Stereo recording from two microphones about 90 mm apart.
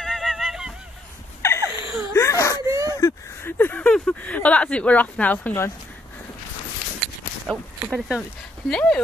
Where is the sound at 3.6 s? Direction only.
20° left (ahead or behind).